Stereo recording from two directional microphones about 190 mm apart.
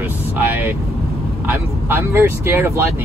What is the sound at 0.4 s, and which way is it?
Vehicle, 10° right (ahead or behind).